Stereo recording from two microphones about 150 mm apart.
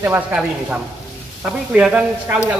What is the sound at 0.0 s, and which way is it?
Speech, 15° right (ahead or behind).